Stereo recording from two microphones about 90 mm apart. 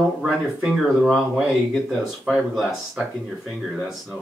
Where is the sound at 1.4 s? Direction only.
Centre (ahead or behind).